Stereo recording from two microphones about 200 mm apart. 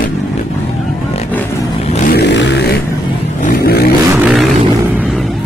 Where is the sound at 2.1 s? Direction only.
60° left (ahead or behind).